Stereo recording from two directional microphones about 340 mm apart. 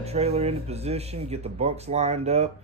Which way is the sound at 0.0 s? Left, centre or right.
Centre.